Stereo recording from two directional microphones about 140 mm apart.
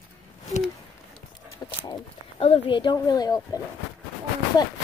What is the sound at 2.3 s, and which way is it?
Speech, 45° left (ahead or behind).